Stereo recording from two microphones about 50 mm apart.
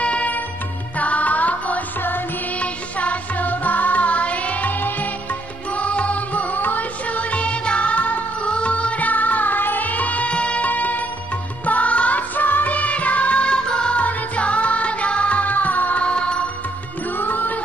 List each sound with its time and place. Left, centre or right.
0.0 s music: left
5.8 s music: left
17.2 s music: left